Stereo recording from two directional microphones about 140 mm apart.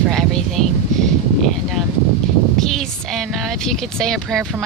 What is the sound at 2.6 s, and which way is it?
Speech, centre (ahead or behind).